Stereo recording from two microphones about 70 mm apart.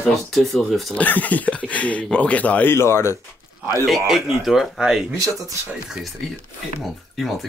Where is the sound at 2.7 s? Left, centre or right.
Left.